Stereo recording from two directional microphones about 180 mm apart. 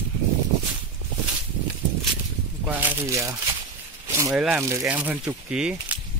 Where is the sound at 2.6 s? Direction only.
15° right (ahead or behind).